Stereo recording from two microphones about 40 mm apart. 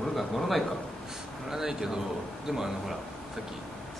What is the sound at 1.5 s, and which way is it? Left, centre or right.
Speech, centre.